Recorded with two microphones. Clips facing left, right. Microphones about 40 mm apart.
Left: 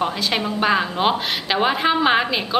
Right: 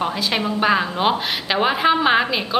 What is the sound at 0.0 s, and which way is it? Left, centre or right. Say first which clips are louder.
A woman's voice: even; centre.